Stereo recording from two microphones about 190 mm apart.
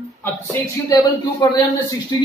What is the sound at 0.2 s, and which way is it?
A man's voice, 15° left (ahead or behind).